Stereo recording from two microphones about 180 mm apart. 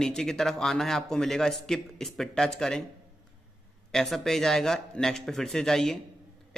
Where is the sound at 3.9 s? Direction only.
Centre (ahead or behind).